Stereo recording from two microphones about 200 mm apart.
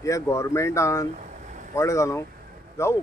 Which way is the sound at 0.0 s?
15° left (ahead or behind).